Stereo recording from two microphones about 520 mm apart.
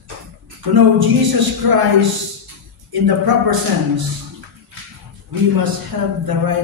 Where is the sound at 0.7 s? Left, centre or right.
Right.